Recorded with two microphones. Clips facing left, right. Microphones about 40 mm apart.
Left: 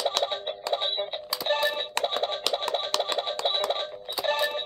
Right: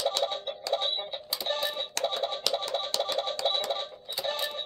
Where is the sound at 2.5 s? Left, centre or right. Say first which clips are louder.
Left 3 dB; left.